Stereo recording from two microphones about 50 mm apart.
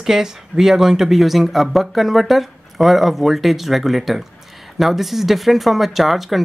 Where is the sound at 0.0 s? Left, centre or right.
Centre.